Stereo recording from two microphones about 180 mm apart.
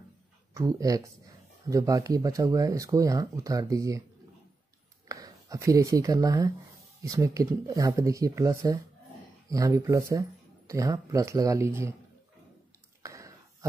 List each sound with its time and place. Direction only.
0.6 s speech: 20° right (ahead or behind)
5.0 s speech: 20° right (ahead or behind)
13.0 s a sound: 20° right (ahead or behind)